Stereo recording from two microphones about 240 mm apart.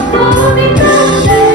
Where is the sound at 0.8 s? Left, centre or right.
Centre.